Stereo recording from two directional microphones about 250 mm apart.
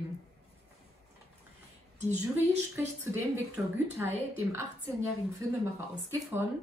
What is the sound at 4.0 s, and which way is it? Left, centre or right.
Speech, centre.